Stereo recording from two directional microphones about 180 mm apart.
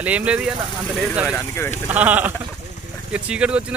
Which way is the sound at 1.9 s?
10° right (ahead or behind).